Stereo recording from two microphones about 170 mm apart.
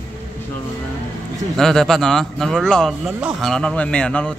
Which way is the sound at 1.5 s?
Centre (ahead or behind).